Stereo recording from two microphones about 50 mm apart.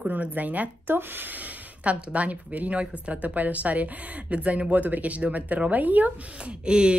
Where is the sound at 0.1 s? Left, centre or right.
Right.